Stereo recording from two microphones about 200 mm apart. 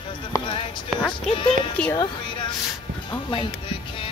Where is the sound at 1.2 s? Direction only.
25° left (ahead or behind).